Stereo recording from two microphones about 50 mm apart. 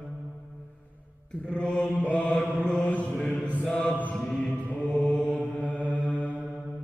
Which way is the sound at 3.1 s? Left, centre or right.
Centre.